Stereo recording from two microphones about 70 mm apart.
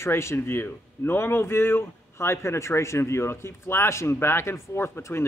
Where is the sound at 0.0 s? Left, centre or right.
Left.